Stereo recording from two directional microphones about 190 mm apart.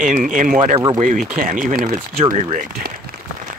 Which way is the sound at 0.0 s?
40° right (ahead or behind).